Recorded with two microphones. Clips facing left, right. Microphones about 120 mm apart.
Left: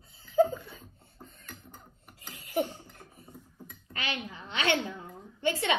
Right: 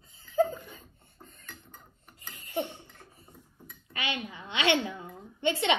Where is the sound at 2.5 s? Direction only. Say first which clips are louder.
Left 3 dB; 25° right (ahead or behind).